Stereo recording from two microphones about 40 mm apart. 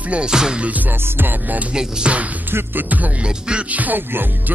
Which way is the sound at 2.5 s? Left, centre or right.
Right.